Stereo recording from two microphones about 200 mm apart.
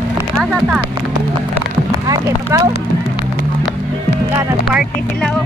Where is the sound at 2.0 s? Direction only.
15° right (ahead or behind).